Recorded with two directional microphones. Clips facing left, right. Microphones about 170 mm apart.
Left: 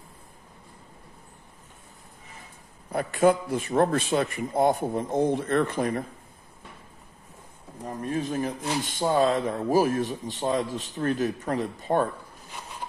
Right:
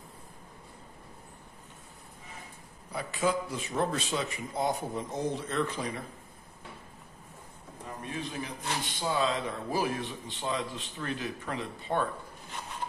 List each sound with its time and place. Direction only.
2.9 s speech: 55° left (ahead or behind)
7.8 s speech: 40° left (ahead or behind)